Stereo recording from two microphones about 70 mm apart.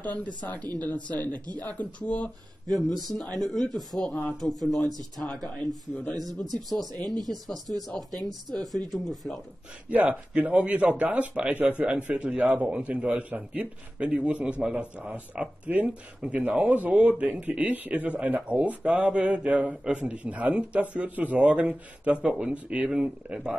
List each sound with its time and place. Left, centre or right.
0.0 s speech: centre
2.7 s a man's voice: centre
4.4 s a man's voice: centre
9.8 s a man's voice: right